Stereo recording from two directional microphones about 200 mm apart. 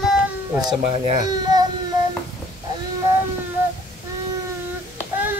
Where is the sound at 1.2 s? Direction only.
20° right (ahead or behind).